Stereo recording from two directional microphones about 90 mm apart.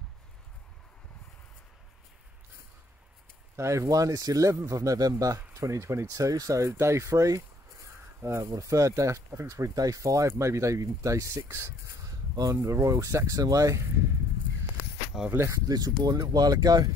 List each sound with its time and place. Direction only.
3.5 s speech: 35° right (ahead or behind)
15.3 s speech: 30° right (ahead or behind)
15.7 s speech: 45° right (ahead or behind)